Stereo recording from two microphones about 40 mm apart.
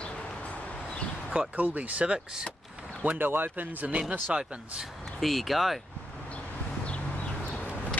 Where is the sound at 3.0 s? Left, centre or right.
Right.